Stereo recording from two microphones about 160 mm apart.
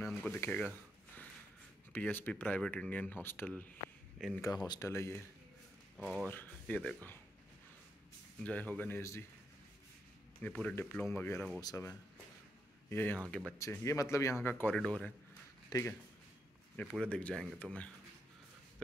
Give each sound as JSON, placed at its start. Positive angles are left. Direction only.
{"t": 0.3, "sound": "speech", "side_deg": 10}
{"t": 1.9, "sound": "speech", "side_deg": 10}
{"t": 4.4, "sound": "speech", "side_deg": 25}
{"t": 5.9, "sound": "speech", "side_deg": -5}
{"t": 6.2, "sound": "speech", "side_deg": 10}
{"t": 8.5, "sound": "speech", "side_deg": 10}
{"t": 10.4, "sound": "speech", "side_deg": 10}
{"t": 15.7, "sound": "speech", "side_deg": 25}
{"t": 16.7, "sound": "speech", "side_deg": 5}